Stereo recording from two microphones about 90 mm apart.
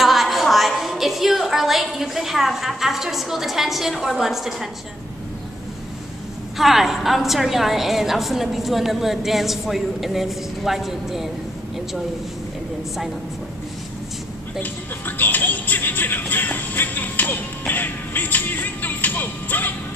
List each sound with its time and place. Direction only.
0.0 s a woman's voice: centre (ahead or behind)
6.6 s a woman's voice: centre (ahead or behind)
14.6 s speech: 20° left (ahead or behind)